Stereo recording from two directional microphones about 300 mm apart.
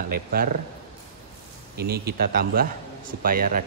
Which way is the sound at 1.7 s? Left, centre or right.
Right.